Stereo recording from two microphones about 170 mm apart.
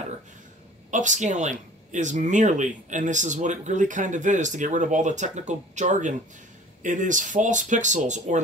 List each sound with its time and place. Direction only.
0.9 s speech: 45° right (ahead or behind)